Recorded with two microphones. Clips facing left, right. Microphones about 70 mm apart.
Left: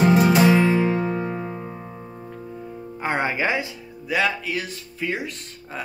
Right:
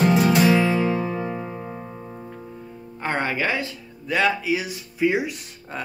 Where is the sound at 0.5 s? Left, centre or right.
Centre.